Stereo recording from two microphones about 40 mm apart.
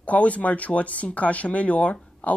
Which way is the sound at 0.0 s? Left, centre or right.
Left.